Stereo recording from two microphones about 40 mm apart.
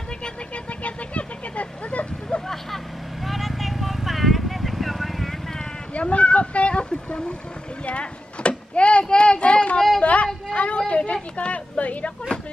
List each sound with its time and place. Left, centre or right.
0.7 s vehicle: left
2.4 s vehicle: centre
5.9 s a sound: left